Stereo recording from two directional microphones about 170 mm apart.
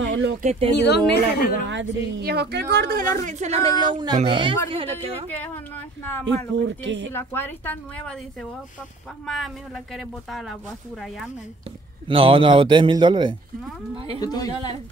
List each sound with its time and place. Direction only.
0.0 s a sound: 90° right
0.4 s a woman's voice: 40° right (ahead or behind)
0.8 s a woman's voice: 75° left (ahead or behind)
1.7 s speech: 85° right
3.0 s a woman's voice: 45° right (ahead or behind)
4.9 s a woman's voice: 10° left (ahead or behind)
6.5 s speech: 90° right
7.1 s a woman's voice: 15° left (ahead or behind)
9.2 s speech: centre (ahead or behind)
12.1 s a man's voice: 30° right (ahead or behind)
14.2 s speech: 20° left (ahead or behind)